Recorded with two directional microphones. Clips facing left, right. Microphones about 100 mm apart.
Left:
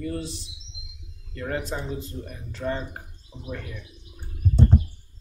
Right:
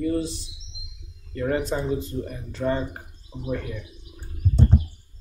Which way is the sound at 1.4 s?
5° right (ahead or behind).